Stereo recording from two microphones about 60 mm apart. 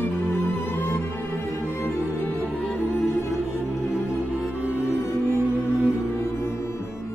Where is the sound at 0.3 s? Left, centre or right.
Left.